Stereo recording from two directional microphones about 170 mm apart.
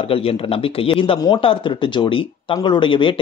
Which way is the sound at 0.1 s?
35° left (ahead or behind).